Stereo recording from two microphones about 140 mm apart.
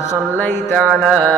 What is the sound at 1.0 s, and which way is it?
Speech, 5° left (ahead or behind).